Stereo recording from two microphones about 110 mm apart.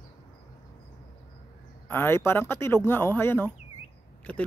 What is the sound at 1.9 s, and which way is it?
Speech, 20° left (ahead or behind).